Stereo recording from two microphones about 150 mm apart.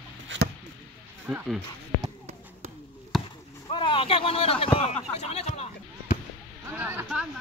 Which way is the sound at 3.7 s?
35° left (ahead or behind).